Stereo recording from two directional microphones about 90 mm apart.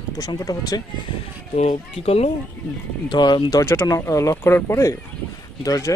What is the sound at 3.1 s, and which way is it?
Speech, 55° left (ahead or behind).